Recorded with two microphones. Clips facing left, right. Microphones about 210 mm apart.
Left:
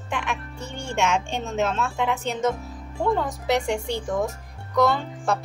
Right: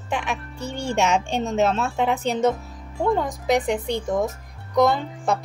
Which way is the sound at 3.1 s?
15° right (ahead or behind).